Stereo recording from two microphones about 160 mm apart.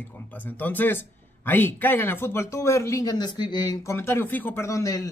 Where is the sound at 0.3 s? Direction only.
10° left (ahead or behind).